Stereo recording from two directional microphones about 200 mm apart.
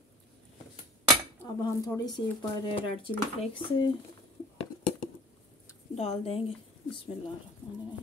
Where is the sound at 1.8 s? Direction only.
20° left (ahead or behind).